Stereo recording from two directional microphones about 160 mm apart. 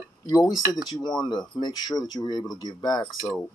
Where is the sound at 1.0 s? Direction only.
25° left (ahead or behind).